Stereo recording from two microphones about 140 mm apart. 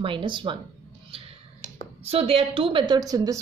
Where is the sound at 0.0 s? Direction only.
35° right (ahead or behind).